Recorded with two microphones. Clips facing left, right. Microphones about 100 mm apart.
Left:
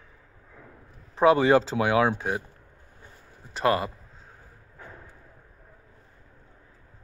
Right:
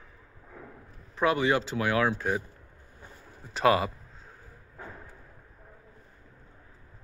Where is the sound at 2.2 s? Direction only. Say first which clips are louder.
Even; 5° left (ahead or behind).